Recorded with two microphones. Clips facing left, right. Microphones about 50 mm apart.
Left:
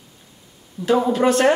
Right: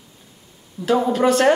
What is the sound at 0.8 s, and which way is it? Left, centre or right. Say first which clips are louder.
Speech: even; centre.